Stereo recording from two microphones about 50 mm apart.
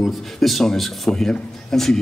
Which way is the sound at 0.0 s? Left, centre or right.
Centre.